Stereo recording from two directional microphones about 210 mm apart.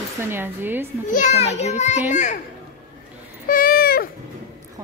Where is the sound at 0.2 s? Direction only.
10° right (ahead or behind).